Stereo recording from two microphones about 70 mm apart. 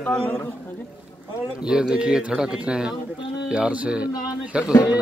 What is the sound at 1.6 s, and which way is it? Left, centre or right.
Speech, centre.